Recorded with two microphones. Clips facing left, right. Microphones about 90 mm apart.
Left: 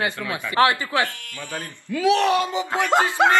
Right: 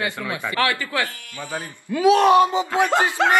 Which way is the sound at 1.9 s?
25° right (ahead or behind).